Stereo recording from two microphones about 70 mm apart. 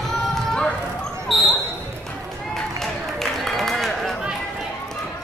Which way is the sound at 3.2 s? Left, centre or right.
Centre.